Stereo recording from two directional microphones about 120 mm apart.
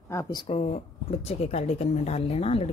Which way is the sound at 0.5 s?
60° left (ahead or behind).